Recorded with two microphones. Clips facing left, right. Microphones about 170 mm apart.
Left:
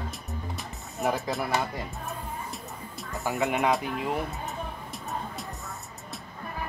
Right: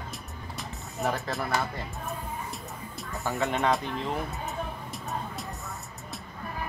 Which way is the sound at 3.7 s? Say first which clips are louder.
Left 1 dB; 10° left (ahead or behind).